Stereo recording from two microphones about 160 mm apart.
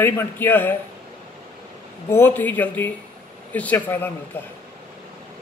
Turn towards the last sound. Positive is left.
turn(degrees=15)  # may be behind; listen again after turning